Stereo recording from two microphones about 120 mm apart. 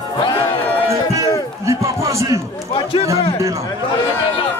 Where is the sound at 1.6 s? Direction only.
25° right (ahead or behind).